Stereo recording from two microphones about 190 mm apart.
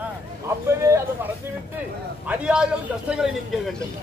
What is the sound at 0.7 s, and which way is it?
Speech, 15° right (ahead or behind).